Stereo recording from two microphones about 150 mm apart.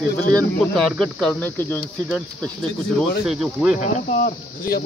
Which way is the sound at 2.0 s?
Centre (ahead or behind).